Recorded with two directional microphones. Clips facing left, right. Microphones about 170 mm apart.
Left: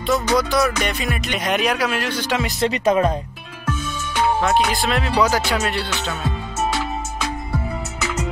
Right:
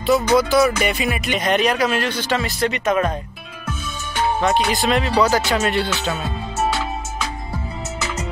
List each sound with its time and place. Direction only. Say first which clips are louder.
0.0 s speech: right 3 dB; 5° right (ahead or behind)
1.4 s speech: right 2 dB; 10° left (ahead or behind)
2.7 s speech: left 4 dB; 30° left (ahead or behind)
4.4 s speech: even; centre (ahead or behind)